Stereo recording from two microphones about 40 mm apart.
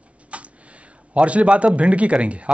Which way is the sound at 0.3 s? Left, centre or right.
Right.